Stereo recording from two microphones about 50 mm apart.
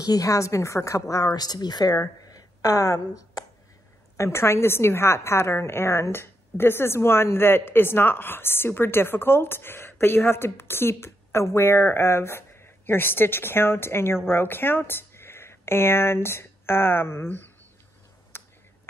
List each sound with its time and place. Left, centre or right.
0.2 s a woman's voice: left
2.7 s a woman's voice: left
4.2 s a woman's voice: left
18.3 s a sound: left